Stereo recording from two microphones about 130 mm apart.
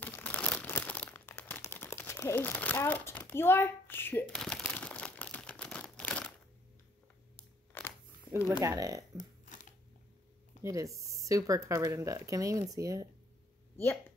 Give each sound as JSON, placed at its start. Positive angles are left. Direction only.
{"t": 0.0, "sound": "crumpling", "side_deg": 15}
{"t": 4.3, "sound": "a sound", "side_deg": 5}
{"t": 8.6, "sound": "speech", "side_deg": -25}
{"t": 10.6, "sound": "speech", "side_deg": -25}